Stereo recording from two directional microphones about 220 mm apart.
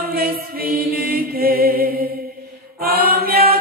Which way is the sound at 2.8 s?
45° right (ahead or behind).